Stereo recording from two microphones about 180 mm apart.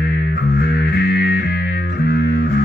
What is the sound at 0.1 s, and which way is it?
Music, 60° left (ahead or behind).